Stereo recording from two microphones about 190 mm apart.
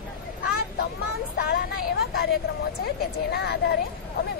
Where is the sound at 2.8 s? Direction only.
55° left (ahead or behind).